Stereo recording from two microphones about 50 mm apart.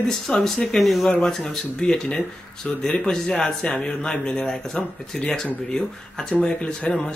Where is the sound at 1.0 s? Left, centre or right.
Centre.